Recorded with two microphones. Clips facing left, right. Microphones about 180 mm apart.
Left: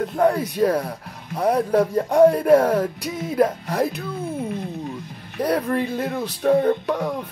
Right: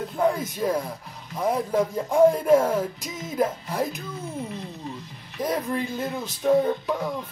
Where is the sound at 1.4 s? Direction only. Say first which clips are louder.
Left 5 dB; 65° left (ahead or behind).